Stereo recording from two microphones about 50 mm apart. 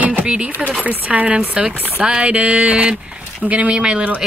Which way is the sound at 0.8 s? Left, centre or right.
Right.